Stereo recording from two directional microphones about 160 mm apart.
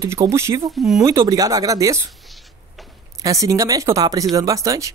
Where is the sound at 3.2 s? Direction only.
20° right (ahead or behind).